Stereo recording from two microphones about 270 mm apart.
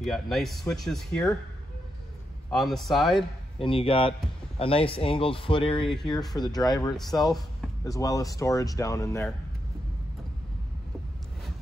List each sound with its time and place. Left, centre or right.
0.0 s speech: centre
2.5 s speech: centre
3.5 s speech: centre
7.2 s speech: centre
7.8 s speech: centre